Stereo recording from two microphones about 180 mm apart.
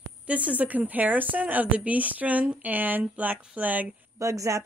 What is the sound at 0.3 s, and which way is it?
A woman's voice, 10° right (ahead or behind).